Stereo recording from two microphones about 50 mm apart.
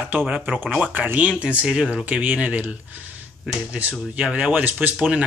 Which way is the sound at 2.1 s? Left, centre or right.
Right.